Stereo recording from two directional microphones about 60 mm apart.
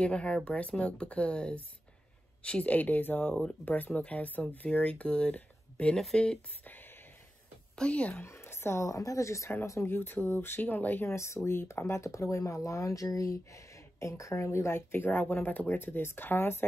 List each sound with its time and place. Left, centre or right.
0.0 s speech: centre
7.7 s speech: centre
8.2 s speech: left
9.8 s speech: left
11.1 s speech: left
14.3 s speech: left